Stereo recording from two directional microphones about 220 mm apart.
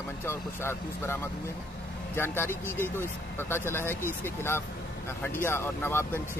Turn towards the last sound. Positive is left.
turn(degrees=10)  # may be behind; listen again after turning